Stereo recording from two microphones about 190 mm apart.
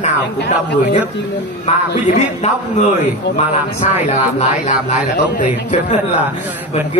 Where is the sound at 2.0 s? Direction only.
40° left (ahead or behind).